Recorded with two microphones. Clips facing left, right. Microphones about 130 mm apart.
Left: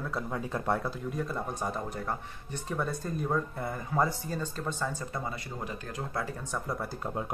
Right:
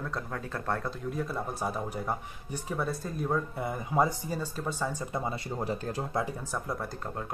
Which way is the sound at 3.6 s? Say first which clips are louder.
Right 4 dB; 15° right (ahead or behind).